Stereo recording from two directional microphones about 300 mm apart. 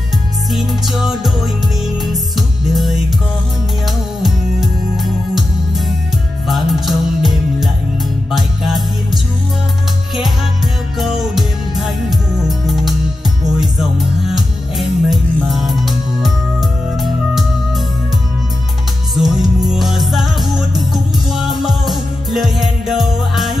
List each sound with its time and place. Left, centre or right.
0.5 s music: centre
4.2 s music: centre
6.4 s music: centre
11.0 s music: centre
19.1 s music: centre